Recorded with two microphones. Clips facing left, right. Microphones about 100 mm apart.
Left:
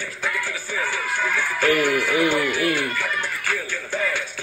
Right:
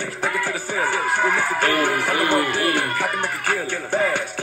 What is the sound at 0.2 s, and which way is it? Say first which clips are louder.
Music: right 4 dB; 35° right (ahead or behind).